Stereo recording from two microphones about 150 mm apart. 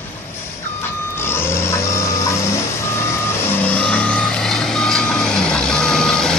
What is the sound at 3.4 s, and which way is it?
Reversing beeps, 15° left (ahead or behind).